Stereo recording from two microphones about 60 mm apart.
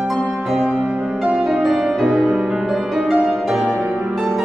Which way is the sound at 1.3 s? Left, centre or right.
Centre.